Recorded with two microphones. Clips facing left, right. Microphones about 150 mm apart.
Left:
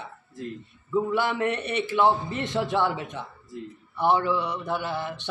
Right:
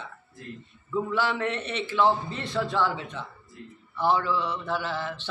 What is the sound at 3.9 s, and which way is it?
A man's voice, 15° left (ahead or behind).